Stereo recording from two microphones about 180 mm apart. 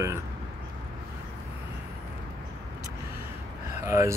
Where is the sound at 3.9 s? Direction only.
15° right (ahead or behind).